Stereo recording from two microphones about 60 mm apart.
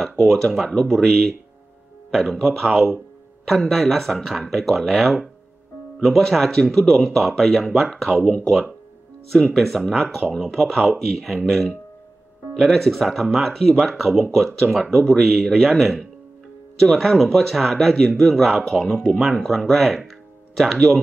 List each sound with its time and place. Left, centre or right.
0.0 s speech: centre
8.2 s speech: centre
9.3 s speech: centre